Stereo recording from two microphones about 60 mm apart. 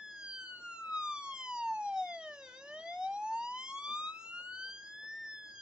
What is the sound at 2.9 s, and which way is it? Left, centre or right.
Emergency vehicle, centre.